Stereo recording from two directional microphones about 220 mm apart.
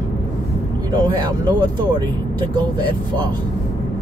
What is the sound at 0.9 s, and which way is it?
Speech, 20° right (ahead or behind).